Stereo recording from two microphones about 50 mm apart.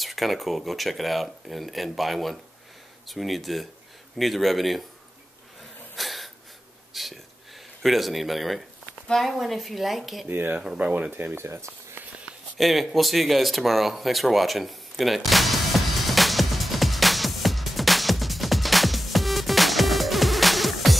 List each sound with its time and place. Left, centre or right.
0.0 s speech: centre
5.9 s a sound: centre
7.8 s speech: centre
10.2 s speech: right
10.8 s speech: right
11.4 s speech: right
12.5 s a sound: centre